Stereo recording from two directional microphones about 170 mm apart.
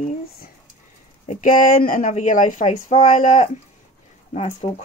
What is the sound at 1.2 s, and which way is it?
Speech, 45° left (ahead or behind).